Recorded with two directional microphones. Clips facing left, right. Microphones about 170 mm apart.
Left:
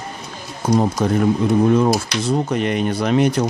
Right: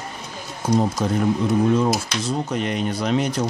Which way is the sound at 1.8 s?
60° left (ahead or behind).